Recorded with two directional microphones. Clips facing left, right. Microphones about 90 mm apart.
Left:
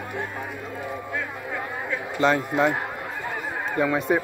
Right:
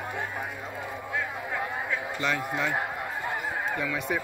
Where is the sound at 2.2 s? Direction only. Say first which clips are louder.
Left 10 dB; 35° left (ahead or behind).